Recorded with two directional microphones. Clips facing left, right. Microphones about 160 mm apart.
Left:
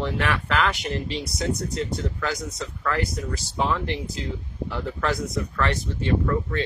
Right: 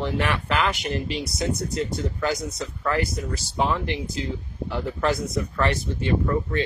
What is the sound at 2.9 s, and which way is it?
Speech, 5° right (ahead or behind).